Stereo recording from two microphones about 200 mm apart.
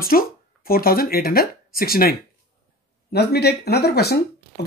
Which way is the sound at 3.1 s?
55° left (ahead or behind).